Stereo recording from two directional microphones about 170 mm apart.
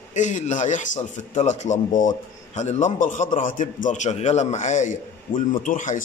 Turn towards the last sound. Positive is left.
turn(degrees=50)  # may be behind; listen again after turning